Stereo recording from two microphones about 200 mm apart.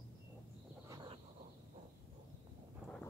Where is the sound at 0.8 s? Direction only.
20° right (ahead or behind).